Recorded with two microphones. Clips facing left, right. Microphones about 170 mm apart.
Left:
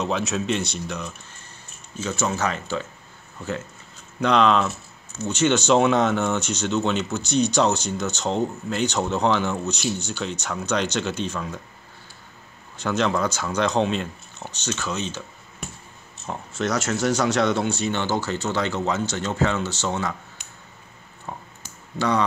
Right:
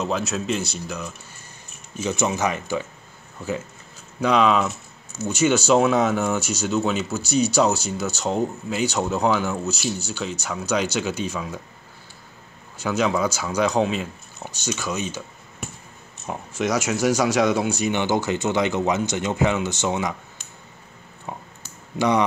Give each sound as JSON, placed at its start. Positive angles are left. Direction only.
{"t": 0.0, "sound": "speech", "side_deg": 0}
{"t": 2.0, "sound": "speech", "side_deg": -15}
{"t": 4.2, "sound": "speech", "side_deg": -5}
{"t": 12.7, "sound": "speech", "side_deg": -5}
{"t": 16.3, "sound": "speech", "side_deg": -10}
{"t": 21.3, "sound": "a sound", "side_deg": -15}
{"t": 21.9, "sound": "speech", "side_deg": -15}